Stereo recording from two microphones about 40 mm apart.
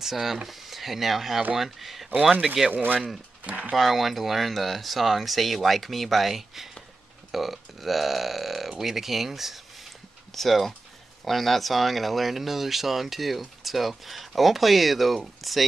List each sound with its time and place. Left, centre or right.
0.0 s speech: centre
2.7 s speech: right
3.7 s speech: centre